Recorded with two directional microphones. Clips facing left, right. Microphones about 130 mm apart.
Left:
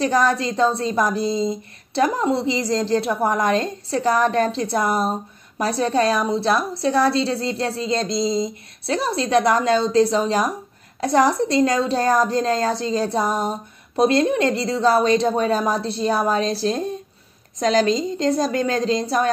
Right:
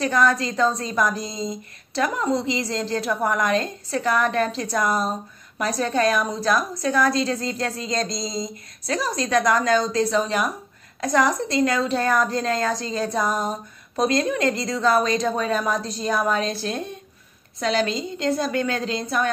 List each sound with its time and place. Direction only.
0.0 s a woman's voice: 30° left (ahead or behind)